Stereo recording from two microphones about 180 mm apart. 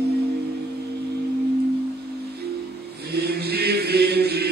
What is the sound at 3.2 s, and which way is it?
Chant, 60° right (ahead or behind).